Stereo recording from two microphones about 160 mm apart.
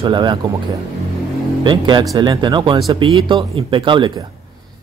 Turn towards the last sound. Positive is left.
turn(degrees=-30)  # may be behind; listen again after turning